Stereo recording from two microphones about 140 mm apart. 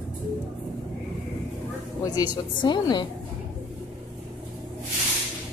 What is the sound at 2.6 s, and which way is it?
Speech, 30° left (ahead or behind).